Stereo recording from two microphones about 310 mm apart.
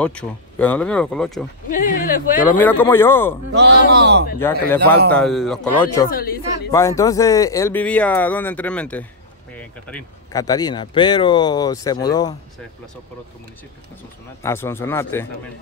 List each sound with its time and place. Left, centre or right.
0.0 s speech: centre
1.7 s speech: left
2.6 s speech: centre
3.9 s speech: right
4.4 s speech: centre
6.0 s a man's voice: left
6.7 s speech: centre
14.4 s speech: centre